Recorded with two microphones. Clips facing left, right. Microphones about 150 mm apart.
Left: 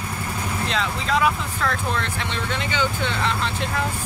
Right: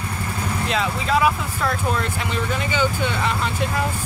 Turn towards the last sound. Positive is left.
turn(degrees=-10)  # may be behind; listen again after turning